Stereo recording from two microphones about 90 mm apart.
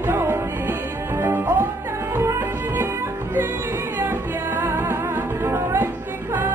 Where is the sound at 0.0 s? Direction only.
25° right (ahead or behind).